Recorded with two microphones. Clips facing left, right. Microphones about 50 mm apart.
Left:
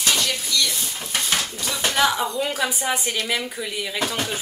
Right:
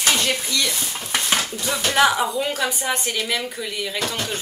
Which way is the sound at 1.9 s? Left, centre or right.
Centre.